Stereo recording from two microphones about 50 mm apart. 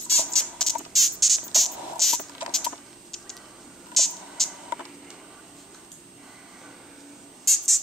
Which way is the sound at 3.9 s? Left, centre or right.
Centre.